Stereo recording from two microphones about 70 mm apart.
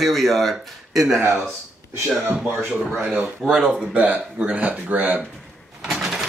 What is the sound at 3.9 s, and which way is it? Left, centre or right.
Speech, right.